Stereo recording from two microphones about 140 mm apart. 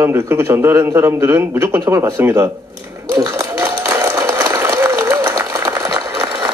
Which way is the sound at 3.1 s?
25° right (ahead or behind).